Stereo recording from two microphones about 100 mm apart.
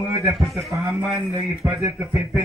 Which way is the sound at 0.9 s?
10° right (ahead or behind).